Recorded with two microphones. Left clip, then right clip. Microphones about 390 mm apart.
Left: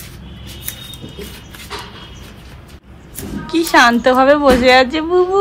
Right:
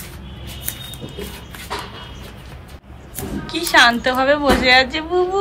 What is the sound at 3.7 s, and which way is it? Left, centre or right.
A woman's voice, centre.